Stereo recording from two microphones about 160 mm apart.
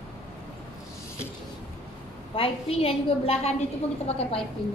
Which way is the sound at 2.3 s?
35° left (ahead or behind).